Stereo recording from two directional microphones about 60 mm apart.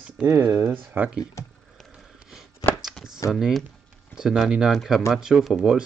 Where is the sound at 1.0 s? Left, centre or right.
Right.